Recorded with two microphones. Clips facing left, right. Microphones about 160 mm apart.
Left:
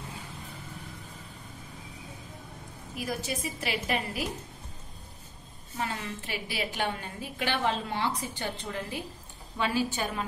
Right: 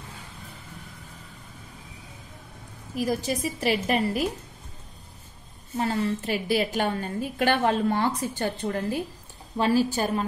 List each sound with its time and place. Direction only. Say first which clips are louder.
3.1 s a woman's voice: right 5 dB; 40° right (ahead or behind)
5.8 s a woman's voice: right 9 dB; 35° right (ahead or behind)